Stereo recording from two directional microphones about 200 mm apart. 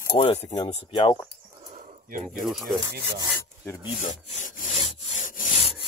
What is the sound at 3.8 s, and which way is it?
Sawing, 35° left (ahead or behind).